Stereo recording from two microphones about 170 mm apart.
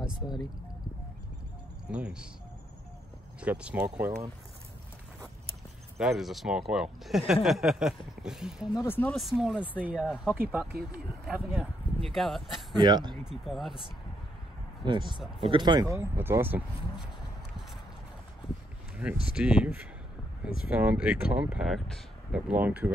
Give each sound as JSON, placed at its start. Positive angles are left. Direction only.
{"t": 1.9, "sound": "speech", "side_deg": -5}
{"t": 3.3, "sound": "speech", "side_deg": -5}
{"t": 5.9, "sound": "speech", "side_deg": 0}
{"t": 8.7, "sound": "speech", "side_deg": 15}
{"t": 9.1, "sound": "speech", "side_deg": 0}
{"t": 12.7, "sound": "speech", "side_deg": -25}
{"t": 13.2, "sound": "speech", "side_deg": 0}
{"t": 14.9, "sound": "speech", "side_deg": -25}
{"t": 19.0, "sound": "speech", "side_deg": -10}